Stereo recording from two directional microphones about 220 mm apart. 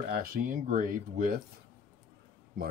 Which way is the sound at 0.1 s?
40° right (ahead or behind).